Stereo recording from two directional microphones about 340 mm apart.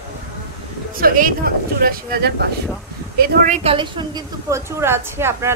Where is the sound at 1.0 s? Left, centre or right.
Right.